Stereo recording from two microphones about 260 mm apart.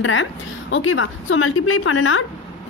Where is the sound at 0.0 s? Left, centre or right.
Left.